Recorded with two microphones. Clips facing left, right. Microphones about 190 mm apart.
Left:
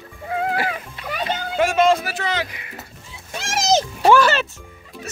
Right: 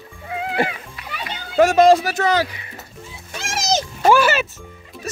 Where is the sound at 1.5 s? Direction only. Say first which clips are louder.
Right 5 dB; 40° right (ahead or behind).